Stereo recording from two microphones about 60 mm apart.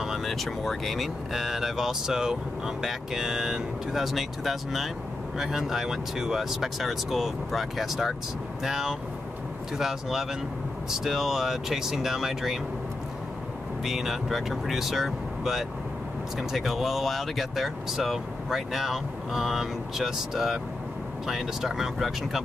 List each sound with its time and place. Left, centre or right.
0.0 s speech: centre
13.8 s speech: centre